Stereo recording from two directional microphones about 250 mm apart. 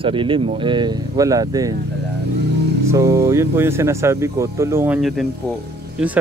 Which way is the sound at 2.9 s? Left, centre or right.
Centre.